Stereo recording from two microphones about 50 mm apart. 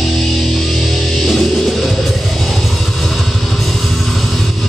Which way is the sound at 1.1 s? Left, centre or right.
Centre.